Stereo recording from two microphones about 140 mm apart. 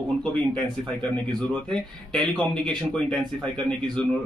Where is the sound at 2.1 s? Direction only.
35° right (ahead or behind).